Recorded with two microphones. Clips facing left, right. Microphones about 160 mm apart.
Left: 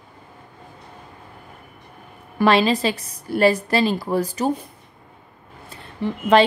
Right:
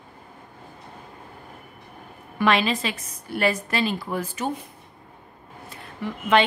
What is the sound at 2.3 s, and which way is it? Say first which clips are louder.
A woman's voice: left 5 dB; 35° left (ahead or behind).